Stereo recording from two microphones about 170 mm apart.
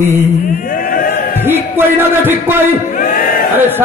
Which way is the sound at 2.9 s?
55° left (ahead or behind).